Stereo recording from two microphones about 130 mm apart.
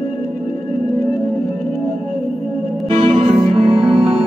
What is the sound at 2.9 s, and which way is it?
Music, 45° right (ahead or behind).